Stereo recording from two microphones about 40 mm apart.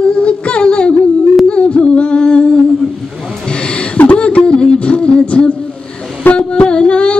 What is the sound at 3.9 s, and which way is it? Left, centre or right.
Beatboxing, left.